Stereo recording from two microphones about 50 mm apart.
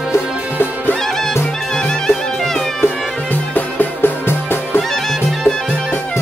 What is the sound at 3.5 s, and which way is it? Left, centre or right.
Music, left.